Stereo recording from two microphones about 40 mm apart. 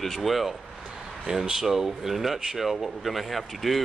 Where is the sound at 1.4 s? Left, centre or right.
Centre.